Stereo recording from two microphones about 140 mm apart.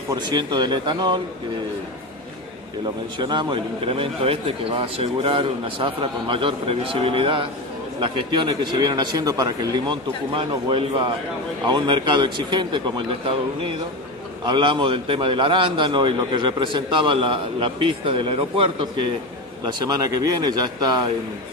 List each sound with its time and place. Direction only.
0.1 s a man's voice: 30° right (ahead or behind)
3.2 s a man's voice: 35° right (ahead or behind)
10.3 s a man's voice: 40° right (ahead or behind)
19.6 s speech: 25° right (ahead or behind)